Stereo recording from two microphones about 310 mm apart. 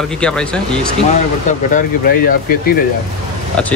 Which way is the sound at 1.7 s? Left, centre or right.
Left.